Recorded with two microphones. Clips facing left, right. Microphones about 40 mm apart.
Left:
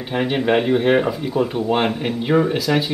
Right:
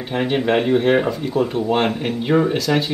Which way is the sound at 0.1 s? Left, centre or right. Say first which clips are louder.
Even; centre.